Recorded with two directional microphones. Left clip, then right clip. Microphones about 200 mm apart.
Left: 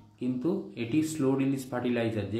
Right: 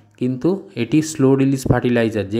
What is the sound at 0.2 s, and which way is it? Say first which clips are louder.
Speech: right 11 dB; 40° right (ahead or behind).